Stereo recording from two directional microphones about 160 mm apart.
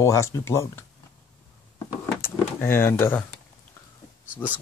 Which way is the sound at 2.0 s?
15° left (ahead or behind).